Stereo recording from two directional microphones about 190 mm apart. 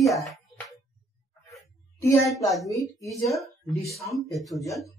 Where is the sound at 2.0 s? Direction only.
15° left (ahead or behind).